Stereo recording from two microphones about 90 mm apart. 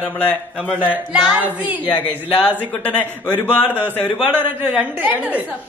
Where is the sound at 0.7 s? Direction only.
15° right (ahead or behind).